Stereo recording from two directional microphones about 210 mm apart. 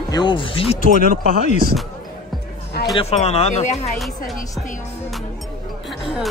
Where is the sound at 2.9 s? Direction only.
30° left (ahead or behind).